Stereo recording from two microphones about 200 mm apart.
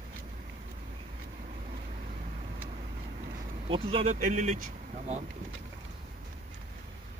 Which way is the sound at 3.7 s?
30° right (ahead or behind).